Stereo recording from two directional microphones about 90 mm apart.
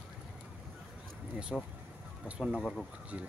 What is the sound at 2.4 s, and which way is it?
Speech, 5° left (ahead or behind).